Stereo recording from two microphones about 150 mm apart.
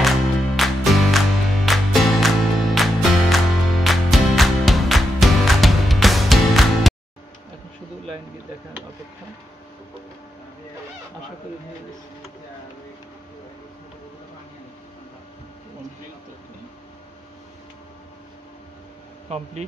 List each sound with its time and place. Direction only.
0.6 s music: centre (ahead or behind)
19.2 s speech: 45° right (ahead or behind)